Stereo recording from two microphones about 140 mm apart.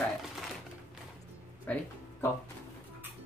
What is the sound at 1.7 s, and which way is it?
Speech, 10° left (ahead or behind).